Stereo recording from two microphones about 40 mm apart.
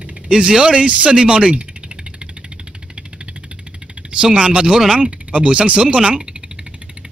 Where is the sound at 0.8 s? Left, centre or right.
Right.